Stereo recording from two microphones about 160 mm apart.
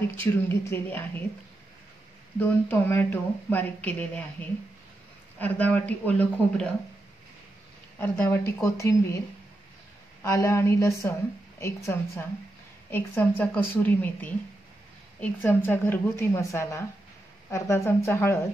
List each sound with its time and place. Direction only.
0.2 s speech: 15° left (ahead or behind)
2.3 s speech: 10° left (ahead or behind)
5.4 s speech: 10° left (ahead or behind)
8.0 s speech: 15° left (ahead or behind)
10.2 s speech: 15° left (ahead or behind)